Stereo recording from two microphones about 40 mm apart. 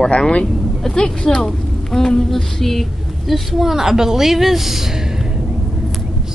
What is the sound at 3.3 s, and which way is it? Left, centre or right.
A woman's voice, centre.